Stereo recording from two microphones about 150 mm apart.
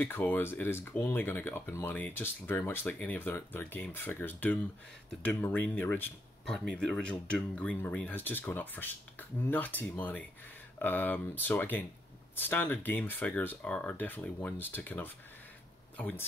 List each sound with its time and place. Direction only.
0.0 s speech: 15° left (ahead or behind)